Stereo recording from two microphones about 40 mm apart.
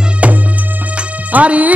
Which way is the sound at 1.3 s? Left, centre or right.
Right.